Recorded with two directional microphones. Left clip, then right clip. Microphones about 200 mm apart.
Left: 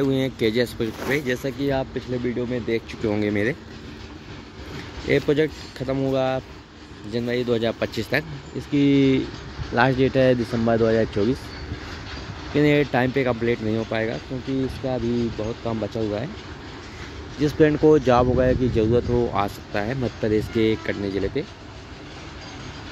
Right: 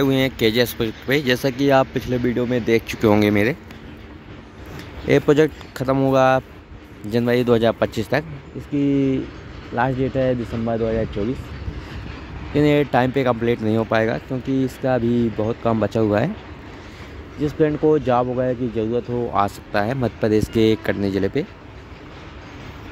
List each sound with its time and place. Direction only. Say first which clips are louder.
0.0 s speech: right 4 dB; 10° right (ahead or behind); by 3.1 s 35° right (ahead or behind)
3.1 s speech: right 6 dB; 15° right (ahead or behind)
5.0 s speech: right 5 dB; 25° right (ahead or behind)
8.7 s speech: left 1 dB; centre (ahead or behind)
12.5 s speech: right 2 dB; 15° right (ahead or behind); by 16.3 s 45° right (ahead or behind)
17.4 s speech: left 1 dB; centre (ahead or behind)
19.2 s speech: right 4 dB; 10° right (ahead or behind); by 21.5 s 25° right (ahead or behind)